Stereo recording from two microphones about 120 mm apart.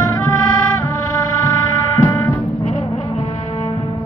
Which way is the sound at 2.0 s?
25° left (ahead or behind).